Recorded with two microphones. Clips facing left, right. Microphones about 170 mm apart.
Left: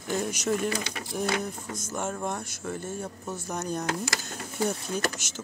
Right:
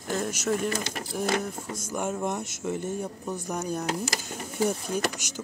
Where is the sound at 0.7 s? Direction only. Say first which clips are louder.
Right 1 dB; 50° right (ahead or behind).